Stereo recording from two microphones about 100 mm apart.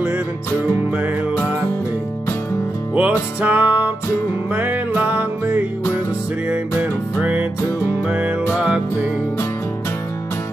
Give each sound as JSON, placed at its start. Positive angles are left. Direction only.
{"t": 2.9, "sound": "music", "side_deg": -15}